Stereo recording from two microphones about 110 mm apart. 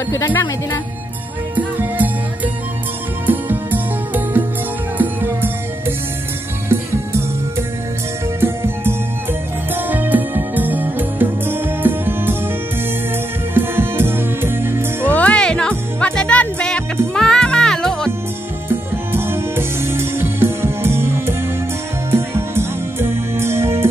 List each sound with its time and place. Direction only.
1.5 s music: 15° right (ahead or behind)
8.4 s music: 20° right (ahead or behind)
13.6 s music: 20° right (ahead or behind)
15.0 s music: 10° left (ahead or behind)
18.7 s music: 20° right (ahead or behind)